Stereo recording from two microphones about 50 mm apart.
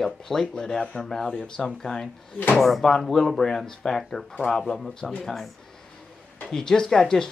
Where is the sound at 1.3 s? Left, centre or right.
Left.